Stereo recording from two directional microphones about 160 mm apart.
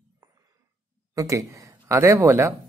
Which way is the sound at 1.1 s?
20° right (ahead or behind).